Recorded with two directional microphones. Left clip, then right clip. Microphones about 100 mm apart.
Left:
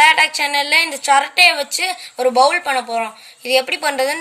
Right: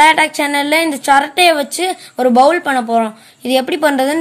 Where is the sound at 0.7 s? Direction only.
20° right (ahead or behind).